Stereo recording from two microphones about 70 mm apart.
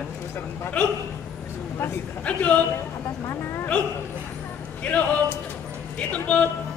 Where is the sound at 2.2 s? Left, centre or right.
Centre.